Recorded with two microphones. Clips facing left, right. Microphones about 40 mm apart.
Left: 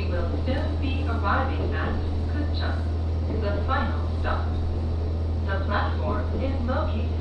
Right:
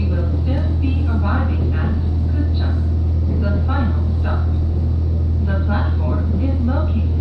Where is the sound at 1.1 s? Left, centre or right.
Centre.